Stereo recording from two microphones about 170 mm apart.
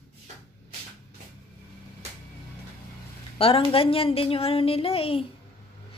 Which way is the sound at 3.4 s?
35° left (ahead or behind).